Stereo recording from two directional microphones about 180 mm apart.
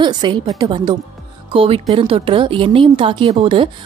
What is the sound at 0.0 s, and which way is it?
Speech, 25° right (ahead or behind).